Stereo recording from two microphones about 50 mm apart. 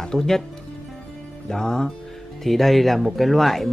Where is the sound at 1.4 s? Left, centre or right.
Centre.